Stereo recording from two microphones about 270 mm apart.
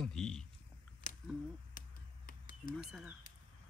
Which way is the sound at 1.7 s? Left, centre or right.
Left.